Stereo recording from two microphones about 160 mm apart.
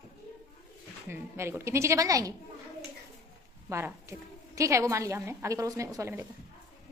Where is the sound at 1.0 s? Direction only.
15° right (ahead or behind).